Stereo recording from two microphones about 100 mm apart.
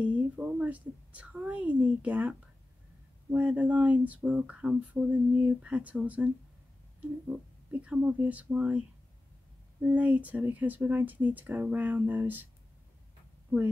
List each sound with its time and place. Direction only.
0.0 s a woman's voice: 15° right (ahead or behind)